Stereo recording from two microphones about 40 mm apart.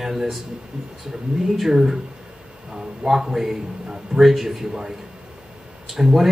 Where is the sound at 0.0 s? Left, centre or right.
Centre.